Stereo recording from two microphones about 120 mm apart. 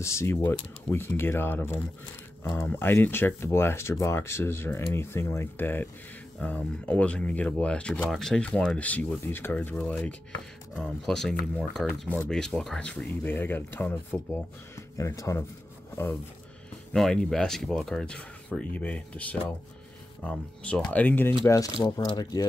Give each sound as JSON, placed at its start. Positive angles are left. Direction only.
{"t": 0.0, "sound": "speech", "side_deg": 25}
{"t": 16.9, "sound": "speech", "side_deg": 5}
{"t": 21.8, "sound": "speech", "side_deg": 35}